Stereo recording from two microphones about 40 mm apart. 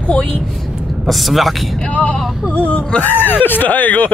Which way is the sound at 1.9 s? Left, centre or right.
Left.